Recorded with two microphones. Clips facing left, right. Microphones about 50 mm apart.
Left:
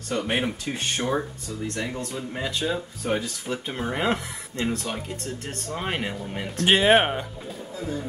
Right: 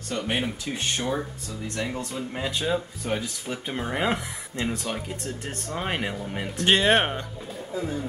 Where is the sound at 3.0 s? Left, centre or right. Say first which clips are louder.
Left 4 dB; centre.